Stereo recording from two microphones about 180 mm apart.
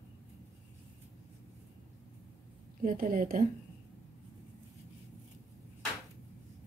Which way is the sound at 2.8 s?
50° right (ahead or behind).